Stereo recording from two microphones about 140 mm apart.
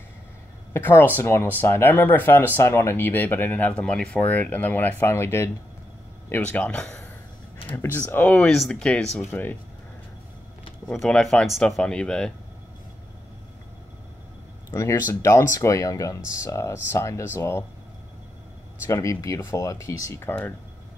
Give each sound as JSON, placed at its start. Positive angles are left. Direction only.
{"t": 0.7, "sound": "speech", "side_deg": 15}
{"t": 10.9, "sound": "speech", "side_deg": 5}
{"t": 14.7, "sound": "speech", "side_deg": 20}
{"t": 18.9, "sound": "speech", "side_deg": 20}